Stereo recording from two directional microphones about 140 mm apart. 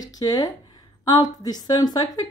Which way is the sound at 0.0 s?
25° left (ahead or behind).